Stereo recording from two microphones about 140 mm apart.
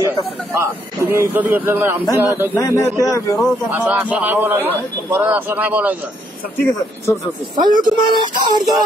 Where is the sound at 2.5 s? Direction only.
25° left (ahead or behind).